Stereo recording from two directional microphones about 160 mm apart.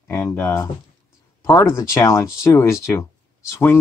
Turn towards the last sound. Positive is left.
turn(degrees=15)  # may be behind; listen again after turning